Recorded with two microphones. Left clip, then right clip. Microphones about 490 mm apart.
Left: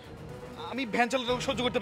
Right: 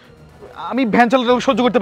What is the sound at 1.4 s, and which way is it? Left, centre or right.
Speech, right.